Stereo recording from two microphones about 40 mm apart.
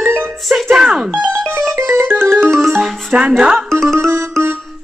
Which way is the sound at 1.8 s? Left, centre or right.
Right.